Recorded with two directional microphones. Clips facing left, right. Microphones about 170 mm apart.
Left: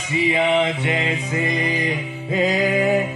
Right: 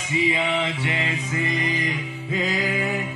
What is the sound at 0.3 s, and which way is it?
Music, 50° left (ahead or behind).